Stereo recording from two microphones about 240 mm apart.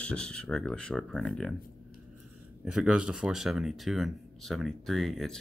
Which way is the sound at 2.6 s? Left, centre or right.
Centre.